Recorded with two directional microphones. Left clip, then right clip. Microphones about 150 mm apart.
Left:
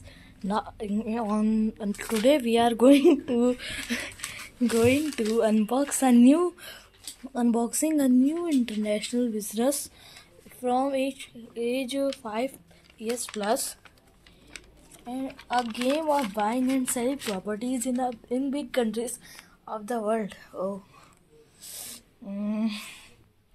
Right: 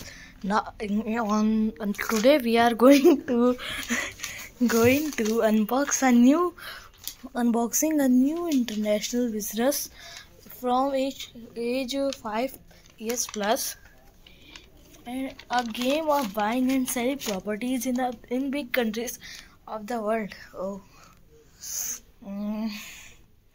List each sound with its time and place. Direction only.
0.0 s speech: centre (ahead or behind)
15.0 s speech: centre (ahead or behind); by 20.8 s 20° left (ahead or behind)
21.5 s owl: 15° left (ahead or behind)
22.7 s speech: 30° left (ahead or behind)